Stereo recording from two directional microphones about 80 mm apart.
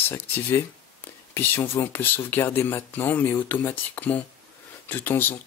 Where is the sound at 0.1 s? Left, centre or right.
Left.